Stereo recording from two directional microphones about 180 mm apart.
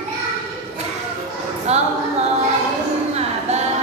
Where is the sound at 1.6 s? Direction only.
35° right (ahead or behind).